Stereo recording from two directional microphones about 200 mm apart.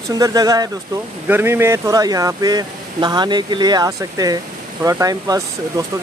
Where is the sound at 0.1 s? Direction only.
20° right (ahead or behind).